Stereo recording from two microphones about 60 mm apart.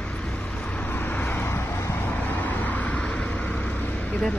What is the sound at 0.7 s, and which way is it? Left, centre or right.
Vehicle, left.